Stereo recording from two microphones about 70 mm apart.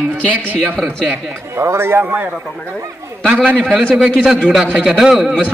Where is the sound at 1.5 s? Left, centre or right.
Right.